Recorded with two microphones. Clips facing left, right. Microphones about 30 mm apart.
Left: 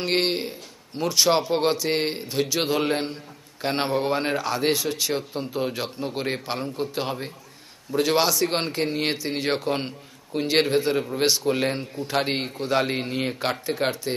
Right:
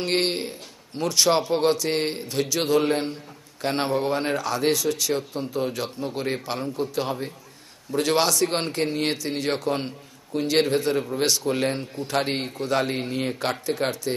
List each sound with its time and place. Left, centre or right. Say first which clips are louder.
0.0 s speech: even; centre; by 7.3 s left
7.9 s speech: even; centre